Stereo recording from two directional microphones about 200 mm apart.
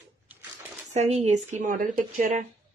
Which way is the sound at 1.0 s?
35° right (ahead or behind).